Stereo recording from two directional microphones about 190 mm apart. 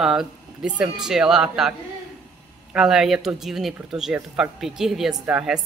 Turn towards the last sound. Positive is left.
turn(degrees=-5)  # may be behind; listen again after turning